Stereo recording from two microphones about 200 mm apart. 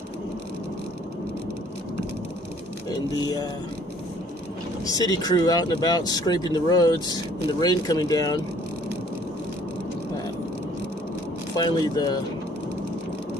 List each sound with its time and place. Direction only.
4.9 s speech: 20° left (ahead or behind)
11.5 s speech: 20° left (ahead or behind)